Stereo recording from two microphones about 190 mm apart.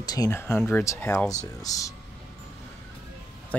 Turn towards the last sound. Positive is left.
turn(degrees=5)  # may be behind; listen again after turning